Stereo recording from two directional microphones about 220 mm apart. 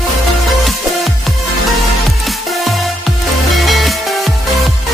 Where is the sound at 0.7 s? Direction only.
Centre (ahead or behind).